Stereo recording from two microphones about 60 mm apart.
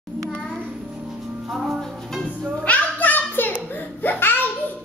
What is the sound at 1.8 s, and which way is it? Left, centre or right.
Music, centre.